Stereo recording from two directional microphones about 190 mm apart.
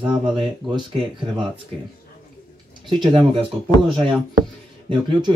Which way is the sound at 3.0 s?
25° right (ahead or behind).